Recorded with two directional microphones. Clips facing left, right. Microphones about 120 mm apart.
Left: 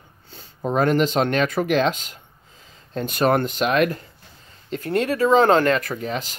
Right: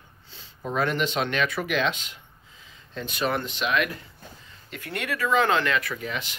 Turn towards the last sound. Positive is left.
turn(degrees=35)  # may be behind; listen again after turning